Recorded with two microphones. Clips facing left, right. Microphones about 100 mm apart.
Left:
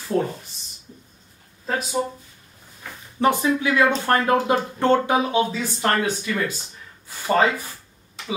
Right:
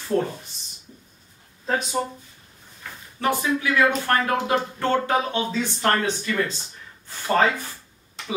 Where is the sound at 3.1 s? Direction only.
25° left (ahead or behind).